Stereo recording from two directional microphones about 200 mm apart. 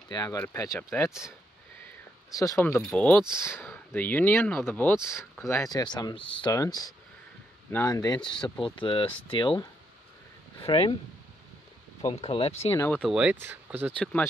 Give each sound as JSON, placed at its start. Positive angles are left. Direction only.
{"t": 0.1, "sound": "speech", "side_deg": 15}
{"t": 2.3, "sound": "speech", "side_deg": 15}
{"t": 12.2, "sound": "speech", "side_deg": 30}
{"t": 12.7, "sound": "speech", "side_deg": 10}
{"t": 13.0, "sound": "speech", "side_deg": -5}
{"t": 13.9, "sound": "speech", "side_deg": 5}